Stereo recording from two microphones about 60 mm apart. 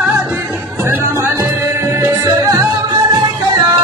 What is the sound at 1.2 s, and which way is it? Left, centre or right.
Music, right.